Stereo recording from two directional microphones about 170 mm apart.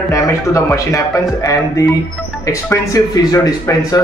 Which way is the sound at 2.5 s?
20° left (ahead or behind).